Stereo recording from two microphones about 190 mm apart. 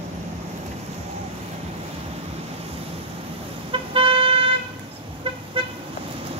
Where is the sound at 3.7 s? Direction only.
30° right (ahead or behind).